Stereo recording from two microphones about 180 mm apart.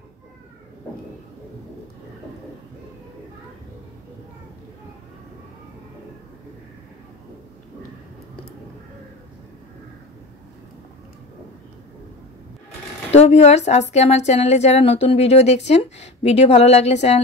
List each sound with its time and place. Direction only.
13.1 s a woman's voice: 35° left (ahead or behind)